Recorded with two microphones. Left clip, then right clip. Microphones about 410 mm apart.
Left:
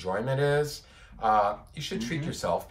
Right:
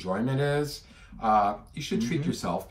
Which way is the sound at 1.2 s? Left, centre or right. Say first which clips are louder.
Even; left.